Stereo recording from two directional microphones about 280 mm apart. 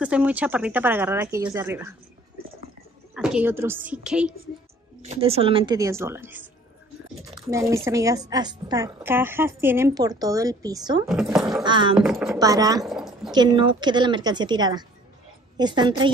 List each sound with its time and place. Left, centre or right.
0.0 s speech: centre
3.2 s a woman's voice: centre
5.0 s speech: right
7.4 s speech: centre
11.1 s a woman's voice: centre
11.6 s speech: centre
12.0 s speech: centre
12.4 s speech: centre
12.8 s a sound: centre
13.3 s speech: centre